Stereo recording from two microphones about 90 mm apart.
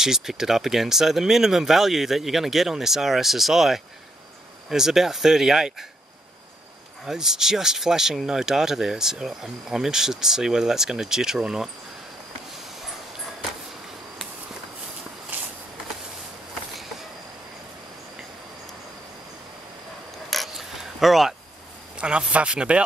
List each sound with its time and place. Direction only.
0.0 s speech: 5° right (ahead or behind)
7.1 s speech: 5° right (ahead or behind)
15.3 s a sound: 20° right (ahead or behind)
20.2 s mechanisms: centre (ahead or behind)
21.9 s speech: 10° right (ahead or behind)